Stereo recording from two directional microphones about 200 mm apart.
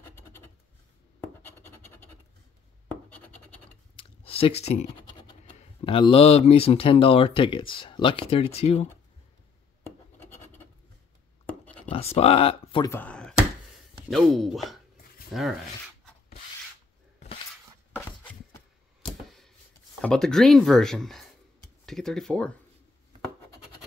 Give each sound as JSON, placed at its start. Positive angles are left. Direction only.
{"t": 1.4, "sound": "scratch", "side_deg": 10}
{"t": 3.9, "sound": "a sound", "side_deg": 30}
{"t": 5.6, "sound": "speech", "side_deg": 25}
{"t": 10.1, "sound": "scratch", "side_deg": 10}
{"t": 11.4, "sound": "a sound", "side_deg": 5}
{"t": 11.9, "sound": "speech", "side_deg": 30}
{"t": 12.9, "sound": "speech", "side_deg": 5}
{"t": 17.9, "sound": "a sound", "side_deg": 10}
{"t": 20.0, "sound": "speech", "side_deg": 5}